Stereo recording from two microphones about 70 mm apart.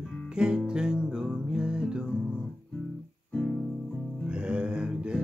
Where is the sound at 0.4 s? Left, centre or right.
Centre.